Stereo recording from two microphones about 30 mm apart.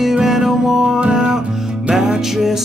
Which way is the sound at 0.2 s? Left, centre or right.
Centre.